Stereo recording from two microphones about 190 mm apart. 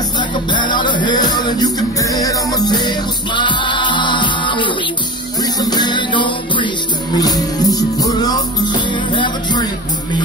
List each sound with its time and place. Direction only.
0.5 s music: 25° left (ahead or behind)